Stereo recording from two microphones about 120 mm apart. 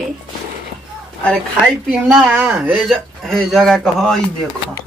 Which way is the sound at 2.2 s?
15° right (ahead or behind).